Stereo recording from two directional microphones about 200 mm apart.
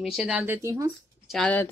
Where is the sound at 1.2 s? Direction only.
Centre (ahead or behind).